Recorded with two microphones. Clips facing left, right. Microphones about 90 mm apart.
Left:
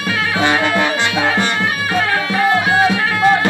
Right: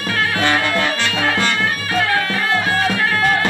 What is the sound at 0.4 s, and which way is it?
Music, 20° left (ahead or behind).